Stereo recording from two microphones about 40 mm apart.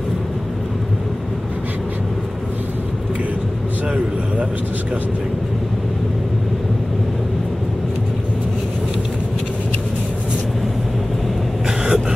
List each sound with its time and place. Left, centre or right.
11.6 s vehicle: centre